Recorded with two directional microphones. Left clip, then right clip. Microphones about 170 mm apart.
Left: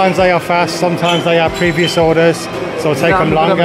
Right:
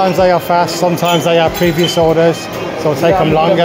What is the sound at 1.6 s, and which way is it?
Speech, 5° left (ahead or behind).